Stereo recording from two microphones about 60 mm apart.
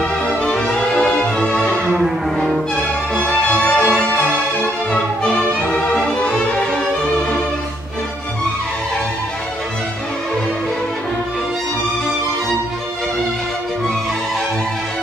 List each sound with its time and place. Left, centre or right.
0.4 s music: centre
1.9 s music: centre
3.3 s music: left
4.9 s music: centre